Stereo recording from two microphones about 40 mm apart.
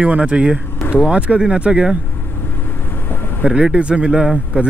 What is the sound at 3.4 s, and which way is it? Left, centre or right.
Speech, right.